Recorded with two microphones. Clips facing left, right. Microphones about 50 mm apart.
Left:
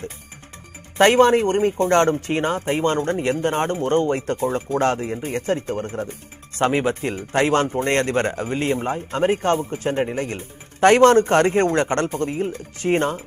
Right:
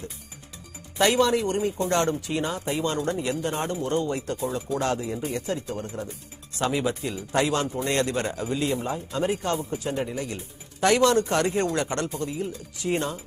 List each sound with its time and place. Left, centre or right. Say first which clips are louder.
0.9 s speech: left 7 dB; left